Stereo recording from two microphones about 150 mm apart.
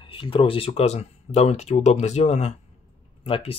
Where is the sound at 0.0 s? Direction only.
35° left (ahead or behind).